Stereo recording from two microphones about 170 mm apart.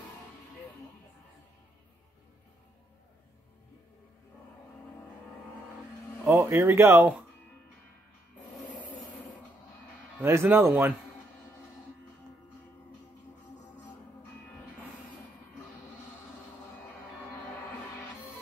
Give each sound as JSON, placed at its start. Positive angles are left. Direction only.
{"t": 6.2, "sound": "speech", "side_deg": -15}
{"t": 10.2, "sound": "speech", "side_deg": -15}